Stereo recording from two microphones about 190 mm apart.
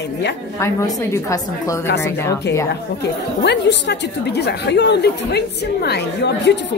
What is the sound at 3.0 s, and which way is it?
Speech, 65° left (ahead or behind).